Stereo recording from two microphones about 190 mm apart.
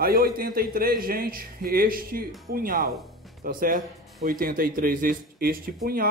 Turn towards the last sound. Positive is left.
turn(degrees=-50)  # may be behind; listen again after turning